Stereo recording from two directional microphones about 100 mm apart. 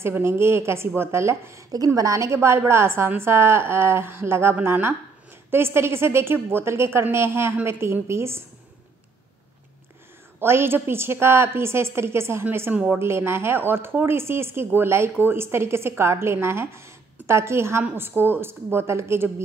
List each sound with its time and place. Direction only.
0.0 s a woman's voice: 25° right (ahead or behind)
10.4 s a woman's voice: 25° right (ahead or behind)